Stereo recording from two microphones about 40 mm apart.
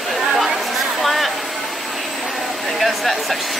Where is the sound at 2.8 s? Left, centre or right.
Centre.